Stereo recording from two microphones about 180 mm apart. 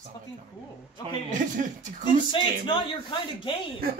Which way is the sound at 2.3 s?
25° left (ahead or behind).